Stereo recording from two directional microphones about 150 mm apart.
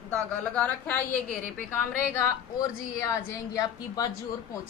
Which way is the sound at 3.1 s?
25° left (ahead or behind).